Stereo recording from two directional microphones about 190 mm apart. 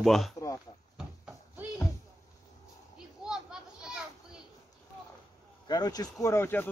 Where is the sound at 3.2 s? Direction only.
5° right (ahead or behind).